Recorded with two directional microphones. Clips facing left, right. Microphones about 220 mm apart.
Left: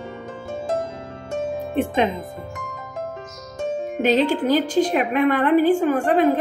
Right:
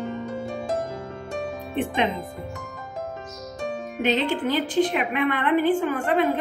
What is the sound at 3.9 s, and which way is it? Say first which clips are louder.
A woman's voice: left 5 dB; 40° left (ahead or behind).